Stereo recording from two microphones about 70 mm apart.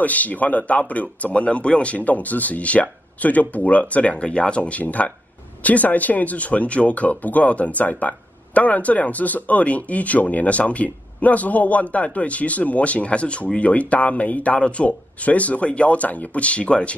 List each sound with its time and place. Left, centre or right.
0.0 s speech: left